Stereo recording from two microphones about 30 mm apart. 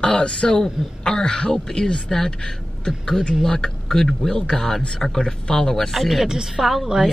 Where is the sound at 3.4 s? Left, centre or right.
Centre.